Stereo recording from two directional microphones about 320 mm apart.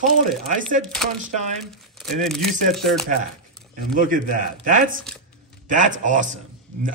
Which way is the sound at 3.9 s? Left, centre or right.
Right.